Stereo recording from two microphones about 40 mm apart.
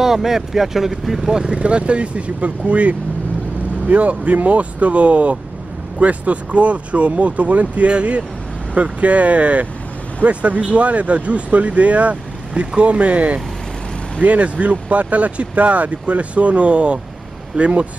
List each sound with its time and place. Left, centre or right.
0.0 s speech: centre
1.3 s speech: centre
1.6 s speech: right